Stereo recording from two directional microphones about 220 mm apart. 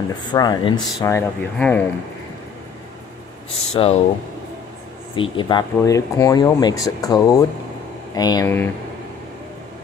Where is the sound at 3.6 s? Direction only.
25° left (ahead or behind).